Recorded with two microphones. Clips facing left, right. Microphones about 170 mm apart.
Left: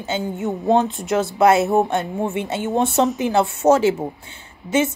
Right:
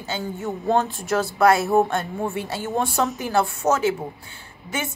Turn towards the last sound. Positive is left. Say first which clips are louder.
# left 10 dB
turn(degrees=25)  # may be behind; listen again after turning